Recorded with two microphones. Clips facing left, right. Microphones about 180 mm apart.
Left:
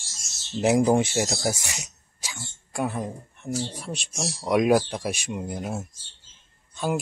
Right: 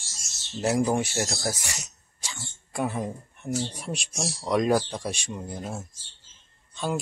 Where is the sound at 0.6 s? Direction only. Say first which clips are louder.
Left 4 dB; 15° left (ahead or behind).